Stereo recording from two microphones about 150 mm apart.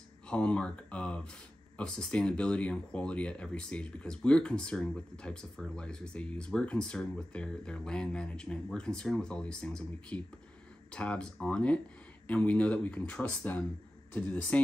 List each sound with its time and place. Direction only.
0.3 s speech: 5° left (ahead or behind)